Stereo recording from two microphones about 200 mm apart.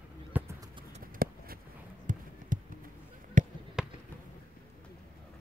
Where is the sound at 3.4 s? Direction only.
40° right (ahead or behind).